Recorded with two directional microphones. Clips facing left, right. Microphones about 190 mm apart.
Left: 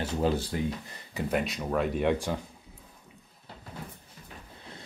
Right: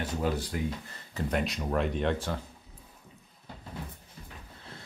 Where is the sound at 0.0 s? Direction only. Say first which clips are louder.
Left 3 dB; 30° left (ahead or behind).